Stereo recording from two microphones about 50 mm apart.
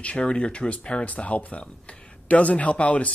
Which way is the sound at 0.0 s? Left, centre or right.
Left.